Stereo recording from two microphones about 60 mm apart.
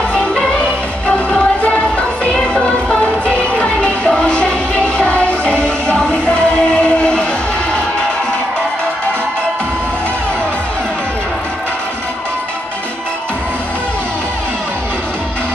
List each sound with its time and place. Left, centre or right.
1.0 s music: left